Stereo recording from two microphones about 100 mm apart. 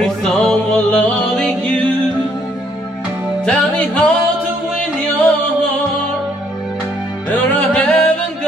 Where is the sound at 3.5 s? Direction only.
10° left (ahead or behind).